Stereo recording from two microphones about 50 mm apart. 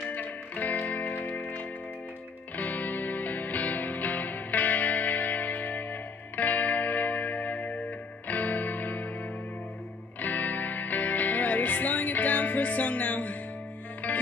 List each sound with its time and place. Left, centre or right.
0.1 s music: left
10.2 s music: left